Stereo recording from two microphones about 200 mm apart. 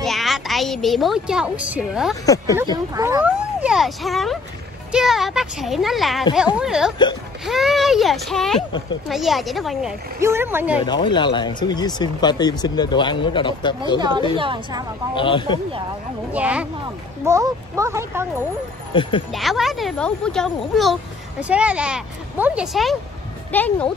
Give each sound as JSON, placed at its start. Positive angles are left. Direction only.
{"t": 0.0, "sound": "speech", "side_deg": 0}
{"t": 2.2, "sound": "speech", "side_deg": 15}
{"t": 2.9, "sound": "speech", "side_deg": -15}
{"t": 10.2, "sound": "speech", "side_deg": -10}
{"t": 10.8, "sound": "speech", "side_deg": 25}
{"t": 14.3, "sound": "a woman's voice", "side_deg": -25}
{"t": 15.1, "sound": "speech", "side_deg": 25}
{"t": 16.3, "sound": "speech", "side_deg": -5}
{"t": 18.9, "sound": "speech", "side_deg": 25}
{"t": 19.3, "sound": "speech", "side_deg": 0}